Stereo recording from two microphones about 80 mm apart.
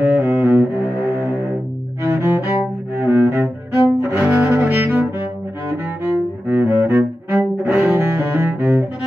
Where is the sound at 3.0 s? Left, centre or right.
Right.